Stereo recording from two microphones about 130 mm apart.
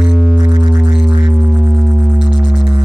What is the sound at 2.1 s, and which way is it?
Music, 5° right (ahead or behind).